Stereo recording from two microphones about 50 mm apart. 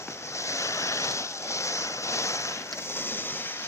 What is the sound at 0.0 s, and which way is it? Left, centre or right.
Waves, left.